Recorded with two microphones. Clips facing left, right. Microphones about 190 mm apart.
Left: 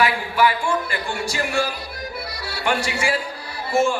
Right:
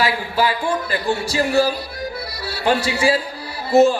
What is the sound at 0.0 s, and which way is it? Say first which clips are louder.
Speech: even; 35° right (ahead or behind).